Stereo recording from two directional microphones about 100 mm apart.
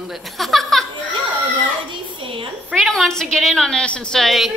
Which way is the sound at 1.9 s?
55° right (ahead or behind).